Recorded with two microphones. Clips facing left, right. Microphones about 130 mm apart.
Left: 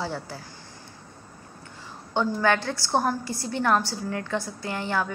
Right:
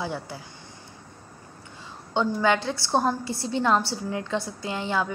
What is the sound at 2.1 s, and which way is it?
A woman's voice, 20° right (ahead or behind).